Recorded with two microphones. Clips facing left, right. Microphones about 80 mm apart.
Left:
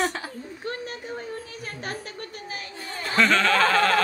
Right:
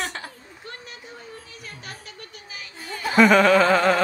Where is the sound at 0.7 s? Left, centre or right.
Left.